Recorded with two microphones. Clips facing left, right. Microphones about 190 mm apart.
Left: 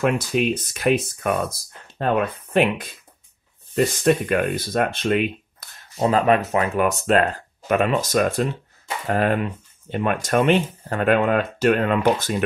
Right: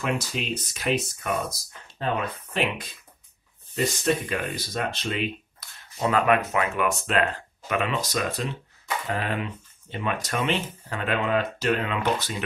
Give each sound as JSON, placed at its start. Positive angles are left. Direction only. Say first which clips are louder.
{"t": 0.0, "sound": "speech", "louder": "left 8 dB", "side_deg": 55}
{"t": 6.0, "sound": "speech", "louder": "left 4 dB", "side_deg": 30}